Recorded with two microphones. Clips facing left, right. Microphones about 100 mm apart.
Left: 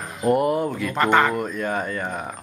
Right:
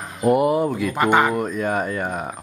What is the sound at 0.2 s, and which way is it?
A man's voice, 5° right (ahead or behind).